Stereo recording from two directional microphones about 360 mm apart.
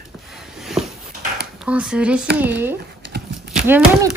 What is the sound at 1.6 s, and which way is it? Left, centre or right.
A child's voice, centre.